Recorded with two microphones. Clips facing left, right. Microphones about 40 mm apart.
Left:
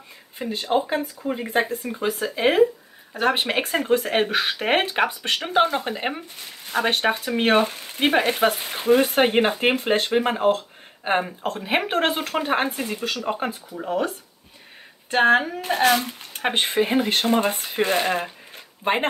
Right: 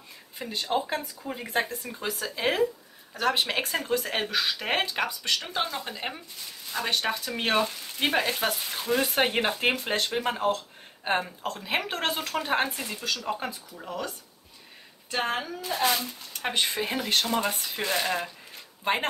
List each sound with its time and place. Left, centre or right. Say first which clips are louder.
0.4 s speech: left 6 dB; left
16.3 s speech: left 7 dB; left